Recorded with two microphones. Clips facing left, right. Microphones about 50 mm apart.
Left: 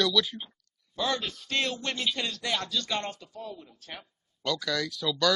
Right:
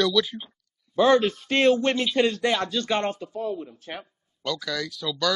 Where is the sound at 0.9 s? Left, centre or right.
Right.